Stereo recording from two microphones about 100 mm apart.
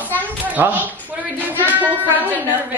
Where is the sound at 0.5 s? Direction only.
15° right (ahead or behind).